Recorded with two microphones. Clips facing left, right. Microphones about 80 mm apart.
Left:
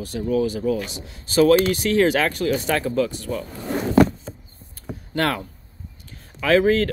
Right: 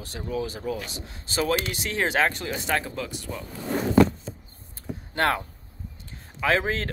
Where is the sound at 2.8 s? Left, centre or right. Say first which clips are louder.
Left 11 dB; centre.